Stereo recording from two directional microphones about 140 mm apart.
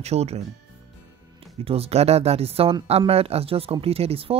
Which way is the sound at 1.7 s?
45° right (ahead or behind).